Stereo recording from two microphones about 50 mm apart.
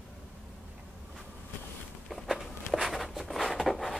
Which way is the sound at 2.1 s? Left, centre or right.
Centre.